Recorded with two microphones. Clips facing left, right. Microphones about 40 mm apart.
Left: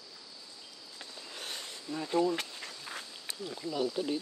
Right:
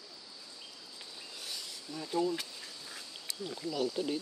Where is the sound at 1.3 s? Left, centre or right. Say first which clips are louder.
Left 3 dB; left.